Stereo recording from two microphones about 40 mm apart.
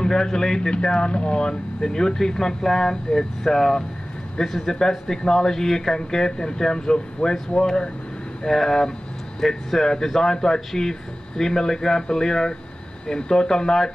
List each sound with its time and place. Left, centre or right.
0.0 s speech: centre